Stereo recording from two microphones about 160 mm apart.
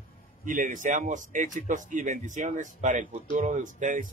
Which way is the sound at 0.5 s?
55° right (ahead or behind).